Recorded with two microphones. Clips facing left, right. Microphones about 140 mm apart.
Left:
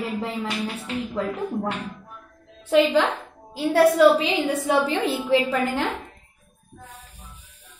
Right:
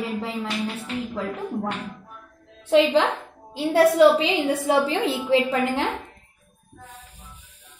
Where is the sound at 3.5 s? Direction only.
25° right (ahead or behind).